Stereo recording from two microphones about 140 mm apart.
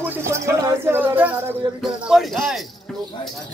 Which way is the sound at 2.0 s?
Centre (ahead or behind).